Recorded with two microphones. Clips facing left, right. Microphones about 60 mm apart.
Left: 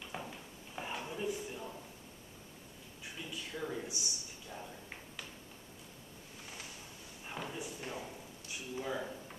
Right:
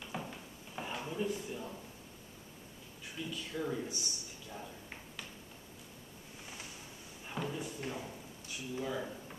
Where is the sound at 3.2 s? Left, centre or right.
Centre.